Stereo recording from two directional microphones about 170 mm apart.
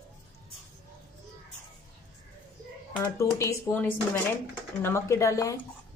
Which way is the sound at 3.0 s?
20° left (ahead or behind).